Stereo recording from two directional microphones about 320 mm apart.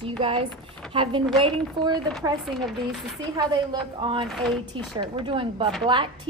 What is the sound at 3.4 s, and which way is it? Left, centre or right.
Speech, centre.